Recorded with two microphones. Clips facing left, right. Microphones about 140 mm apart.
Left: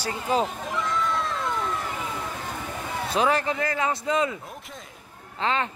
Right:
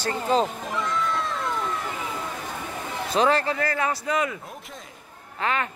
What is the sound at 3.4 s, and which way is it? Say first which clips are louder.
Speech: right 1 dB; 15° left (ahead or behind).